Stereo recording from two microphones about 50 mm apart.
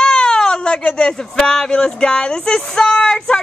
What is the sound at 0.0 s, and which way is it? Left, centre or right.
Baby cry, centre.